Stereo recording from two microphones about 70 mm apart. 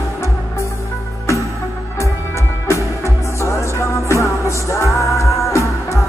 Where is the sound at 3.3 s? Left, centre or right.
Left.